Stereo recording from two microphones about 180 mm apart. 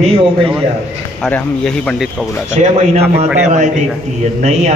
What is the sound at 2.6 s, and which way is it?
Speech, 40° right (ahead or behind).